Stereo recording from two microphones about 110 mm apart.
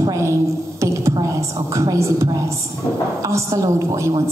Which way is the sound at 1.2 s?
30° right (ahead or behind).